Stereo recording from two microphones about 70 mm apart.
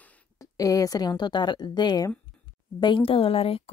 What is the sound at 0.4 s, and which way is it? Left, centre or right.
A woman's voice, left.